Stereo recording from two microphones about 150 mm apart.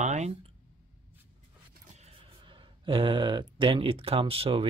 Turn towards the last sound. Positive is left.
turn(degrees=-40)  # may be behind; listen again after turning